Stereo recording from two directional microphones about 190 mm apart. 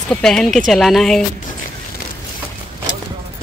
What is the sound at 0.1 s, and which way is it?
A woman's voice, 5° left (ahead or behind).